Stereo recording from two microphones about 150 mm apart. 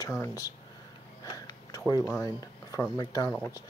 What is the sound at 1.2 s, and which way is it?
Whispering, 25° left (ahead or behind).